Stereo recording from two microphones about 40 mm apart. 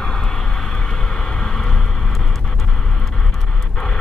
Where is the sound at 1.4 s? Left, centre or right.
Centre.